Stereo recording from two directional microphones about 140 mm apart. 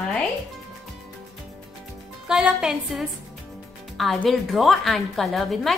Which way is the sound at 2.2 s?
5° right (ahead or behind).